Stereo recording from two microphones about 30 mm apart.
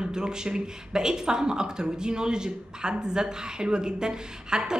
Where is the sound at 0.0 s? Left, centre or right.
Right.